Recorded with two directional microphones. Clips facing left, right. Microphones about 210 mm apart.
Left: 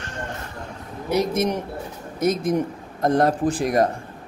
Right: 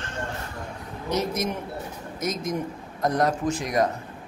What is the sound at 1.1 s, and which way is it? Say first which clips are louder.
Speech: left 5 dB; 10° left (ahead or behind).